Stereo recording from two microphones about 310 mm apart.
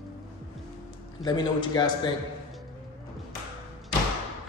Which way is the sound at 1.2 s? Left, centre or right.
Centre.